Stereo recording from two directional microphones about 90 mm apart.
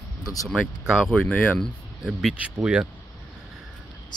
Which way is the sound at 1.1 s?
15° left (ahead or behind).